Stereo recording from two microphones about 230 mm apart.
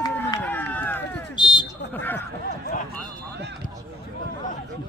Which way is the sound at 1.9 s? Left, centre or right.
Centre.